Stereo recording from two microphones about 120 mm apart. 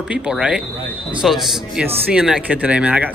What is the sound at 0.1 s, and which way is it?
Speech, 10° right (ahead or behind).